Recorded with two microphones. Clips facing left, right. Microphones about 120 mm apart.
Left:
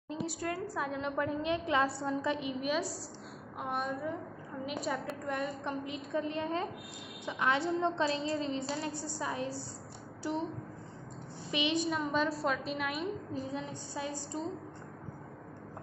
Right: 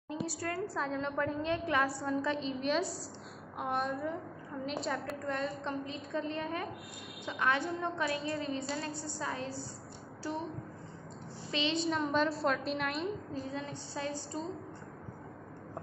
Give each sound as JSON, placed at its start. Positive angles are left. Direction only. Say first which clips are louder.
{"t": 0.1, "sound": "a woman's voice", "louder": "left 1 dB", "side_deg": 20}
{"t": 11.5, "sound": "a woman's voice", "louder": "left 1 dB", "side_deg": 15}
{"t": 13.3, "sound": "a woman's voice", "louder": "left 1 dB", "side_deg": 15}